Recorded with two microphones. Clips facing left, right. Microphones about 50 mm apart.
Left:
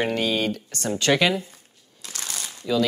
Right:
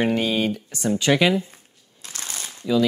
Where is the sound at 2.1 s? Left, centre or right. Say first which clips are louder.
Even; right.